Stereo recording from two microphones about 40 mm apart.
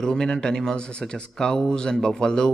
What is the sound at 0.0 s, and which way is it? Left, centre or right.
Speech, centre.